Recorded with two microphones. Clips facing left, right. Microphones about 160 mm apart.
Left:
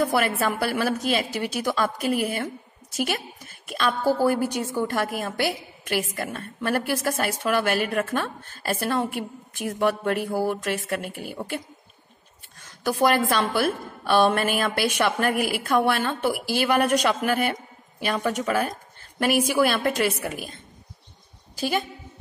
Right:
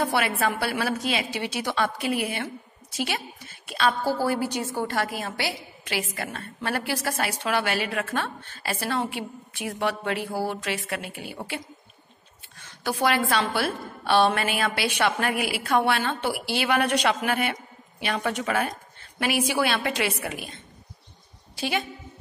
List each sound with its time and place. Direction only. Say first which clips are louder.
0.1 s a woman's voice: left 2 dB; 40° left (ahead or behind)
3.7 s a woman's voice: left 1 dB; 50° left (ahead or behind)
13.4 s a woman's voice: left 3 dB; 50° left (ahead or behind)
21.5 s a woman's voice: left 2 dB; 40° left (ahead or behind)